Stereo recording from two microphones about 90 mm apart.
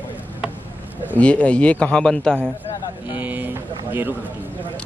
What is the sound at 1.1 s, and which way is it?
A man's voice, 15° left (ahead or behind).